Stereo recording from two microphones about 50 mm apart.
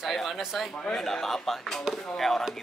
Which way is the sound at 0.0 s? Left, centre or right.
Centre.